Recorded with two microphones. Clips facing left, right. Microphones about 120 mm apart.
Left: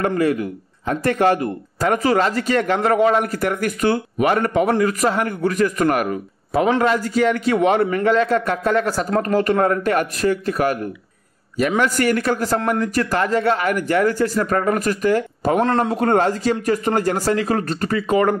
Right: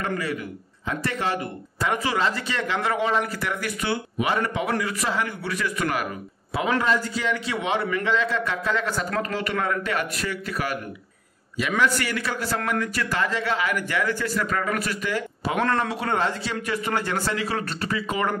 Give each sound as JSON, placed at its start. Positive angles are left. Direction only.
{"t": 0.0, "sound": "speech", "side_deg": 50}
{"t": 11.8, "sound": "speech", "side_deg": 45}
{"t": 15.6, "sound": "a man's voice", "side_deg": 25}
{"t": 15.9, "sound": "speech", "side_deg": 50}